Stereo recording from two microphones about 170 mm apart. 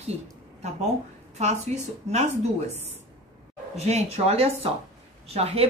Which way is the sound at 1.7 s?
40° right (ahead or behind).